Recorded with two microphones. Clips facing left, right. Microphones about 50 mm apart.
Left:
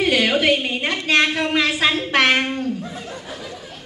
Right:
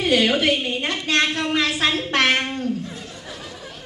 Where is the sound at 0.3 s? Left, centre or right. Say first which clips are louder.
Left 2 dB; centre.